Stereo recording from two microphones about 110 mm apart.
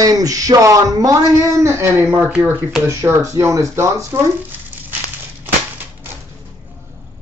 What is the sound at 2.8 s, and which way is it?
Speech, 25° right (ahead or behind).